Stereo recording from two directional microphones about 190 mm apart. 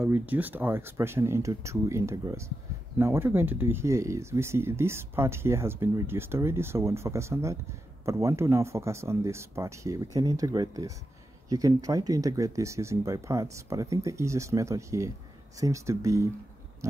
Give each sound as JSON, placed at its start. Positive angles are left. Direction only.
{"t": 0.0, "sound": "speech", "side_deg": -10}